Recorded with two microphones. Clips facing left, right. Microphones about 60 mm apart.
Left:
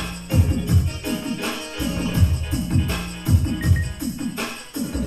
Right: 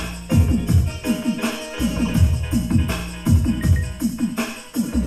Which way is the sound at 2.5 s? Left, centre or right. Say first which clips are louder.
Right 5 dB; left.